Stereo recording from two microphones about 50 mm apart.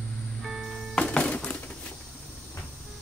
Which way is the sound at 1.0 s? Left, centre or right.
Left.